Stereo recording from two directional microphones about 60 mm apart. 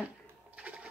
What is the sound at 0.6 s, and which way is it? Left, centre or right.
Sewing machine, centre.